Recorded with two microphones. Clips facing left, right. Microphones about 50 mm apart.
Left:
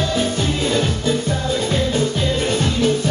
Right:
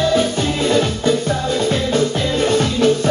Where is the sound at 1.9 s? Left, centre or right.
Right.